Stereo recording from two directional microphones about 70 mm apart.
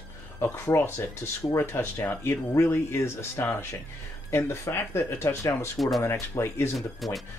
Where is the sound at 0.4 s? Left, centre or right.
Left.